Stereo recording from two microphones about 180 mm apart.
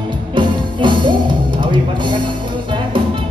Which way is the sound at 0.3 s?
25° right (ahead or behind).